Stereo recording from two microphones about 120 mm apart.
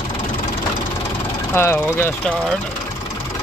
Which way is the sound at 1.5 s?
20° left (ahead or behind).